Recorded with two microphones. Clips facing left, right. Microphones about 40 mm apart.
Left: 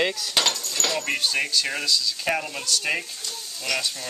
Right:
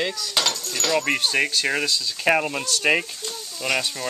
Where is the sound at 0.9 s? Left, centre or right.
Centre.